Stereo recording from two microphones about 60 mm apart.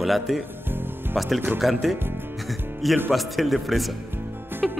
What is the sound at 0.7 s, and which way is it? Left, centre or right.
Music, right.